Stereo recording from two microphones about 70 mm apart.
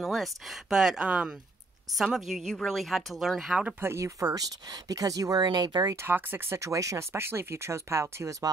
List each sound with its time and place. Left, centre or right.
0.0 s speech: centre
2.1 s speech: centre
3.8 s speech: right
6.0 s speech: right
6.6 s speech: right